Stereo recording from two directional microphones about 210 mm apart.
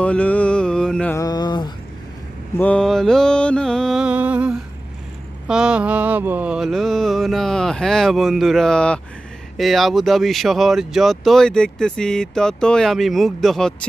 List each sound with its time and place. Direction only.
0.0 s speech: 5° left (ahead or behind)
1.1 s a sound: 20° left (ahead or behind)
2.5 s mantra: 5° left (ahead or behind)
5.5 s speech: 5° right (ahead or behind)